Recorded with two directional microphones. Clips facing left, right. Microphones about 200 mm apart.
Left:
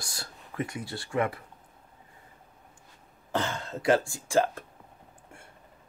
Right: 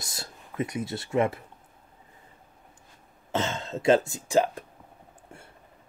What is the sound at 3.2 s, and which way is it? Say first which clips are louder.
Speech: right 2 dB; 20° right (ahead or behind).